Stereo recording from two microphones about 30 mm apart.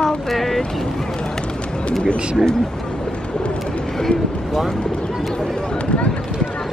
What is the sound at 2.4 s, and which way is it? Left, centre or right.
Speech, centre.